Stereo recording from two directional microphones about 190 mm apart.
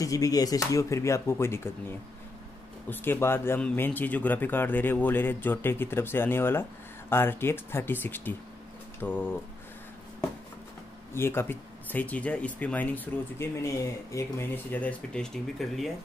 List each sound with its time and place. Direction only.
0.0 s speech: 20° left (ahead or behind)
11.1 s speech: 10° left (ahead or behind)